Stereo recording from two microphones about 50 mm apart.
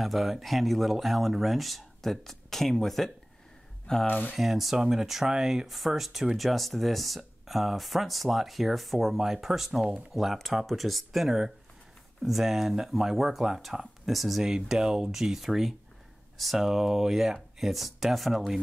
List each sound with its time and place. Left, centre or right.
0.0 s speech: centre
4.1 s speech: left
4.4 s speech: centre